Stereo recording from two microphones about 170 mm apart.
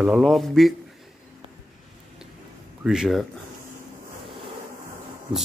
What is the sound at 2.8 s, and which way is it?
Speech, centre (ahead or behind).